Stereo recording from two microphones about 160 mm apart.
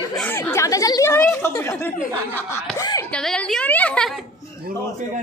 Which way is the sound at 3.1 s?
5° left (ahead or behind).